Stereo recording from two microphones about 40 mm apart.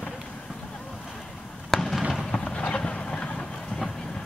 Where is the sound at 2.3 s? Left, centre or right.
Left.